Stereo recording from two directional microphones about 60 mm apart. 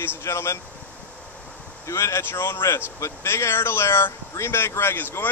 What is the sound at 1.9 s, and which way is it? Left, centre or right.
A man's voice, left.